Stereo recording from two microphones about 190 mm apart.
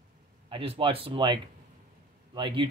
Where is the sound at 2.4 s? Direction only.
25° right (ahead or behind).